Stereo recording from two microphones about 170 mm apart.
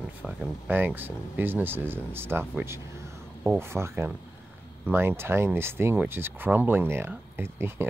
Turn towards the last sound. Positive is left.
turn(degrees=-15)  # may be behind; listen again after turning